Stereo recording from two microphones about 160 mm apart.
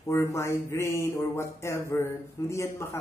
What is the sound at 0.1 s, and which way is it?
Speech, 15° left (ahead or behind).